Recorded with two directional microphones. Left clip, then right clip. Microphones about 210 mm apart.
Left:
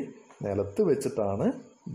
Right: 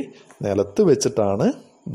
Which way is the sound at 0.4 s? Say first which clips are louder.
Right 8 dB; 25° right (ahead or behind).